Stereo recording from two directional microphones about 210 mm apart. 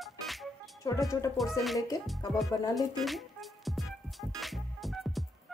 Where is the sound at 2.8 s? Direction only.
Centre (ahead or behind).